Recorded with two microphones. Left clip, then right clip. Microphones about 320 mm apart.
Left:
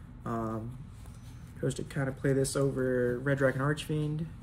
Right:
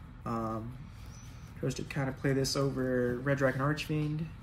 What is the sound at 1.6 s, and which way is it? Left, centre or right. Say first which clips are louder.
Speech: left 2 dB; centre.